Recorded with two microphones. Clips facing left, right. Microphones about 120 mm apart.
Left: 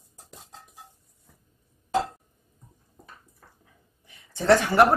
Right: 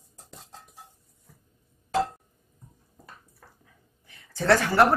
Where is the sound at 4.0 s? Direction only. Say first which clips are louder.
Even; 20° left (ahead or behind).